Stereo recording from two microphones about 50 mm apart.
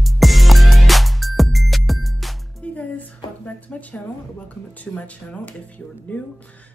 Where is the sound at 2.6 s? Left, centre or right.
Left.